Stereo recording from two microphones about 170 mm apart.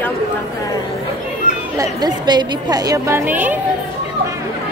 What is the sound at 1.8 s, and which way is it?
A woman's voice, 25° right (ahead or behind).